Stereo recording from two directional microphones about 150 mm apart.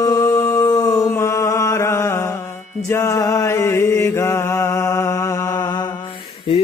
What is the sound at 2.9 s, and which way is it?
Mantra, 20° left (ahead or behind).